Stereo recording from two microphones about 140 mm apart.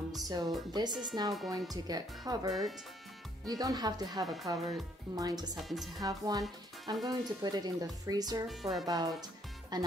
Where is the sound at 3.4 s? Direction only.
25° right (ahead or behind).